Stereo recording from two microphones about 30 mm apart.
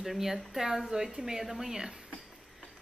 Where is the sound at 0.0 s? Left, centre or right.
Centre.